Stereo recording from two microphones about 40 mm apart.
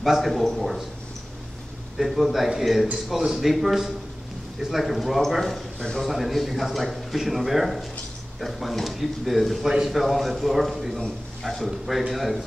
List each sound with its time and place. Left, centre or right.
0.2 s speech: centre
2.0 s speech: centre